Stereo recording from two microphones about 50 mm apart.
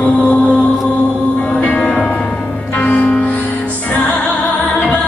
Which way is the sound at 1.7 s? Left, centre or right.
Left.